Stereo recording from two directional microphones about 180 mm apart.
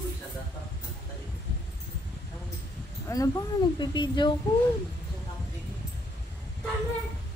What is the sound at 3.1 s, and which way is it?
A woman's voice, 20° left (ahead or behind).